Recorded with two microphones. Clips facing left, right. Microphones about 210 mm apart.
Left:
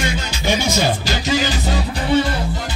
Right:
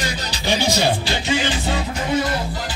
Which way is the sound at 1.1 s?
40° left (ahead or behind).